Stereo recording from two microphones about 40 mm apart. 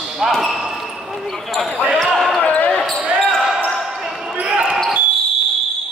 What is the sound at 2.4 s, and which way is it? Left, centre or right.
Basketball bounce, left.